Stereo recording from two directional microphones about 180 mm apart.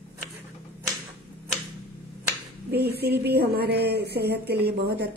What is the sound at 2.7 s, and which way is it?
Speech, 60° right (ahead or behind).